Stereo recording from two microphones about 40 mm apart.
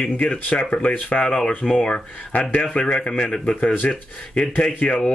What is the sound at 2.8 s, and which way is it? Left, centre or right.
Speech, left.